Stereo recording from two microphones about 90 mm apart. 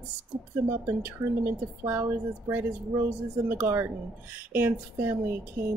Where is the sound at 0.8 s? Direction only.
25° right (ahead or behind).